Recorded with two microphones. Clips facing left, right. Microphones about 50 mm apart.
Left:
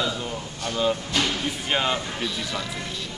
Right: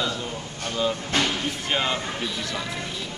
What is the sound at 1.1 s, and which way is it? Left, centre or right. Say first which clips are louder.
Speech: right 4 dB; right.